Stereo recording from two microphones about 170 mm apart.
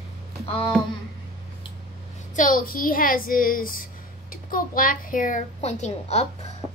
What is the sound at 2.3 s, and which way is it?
A woman's voice, 55° left (ahead or behind).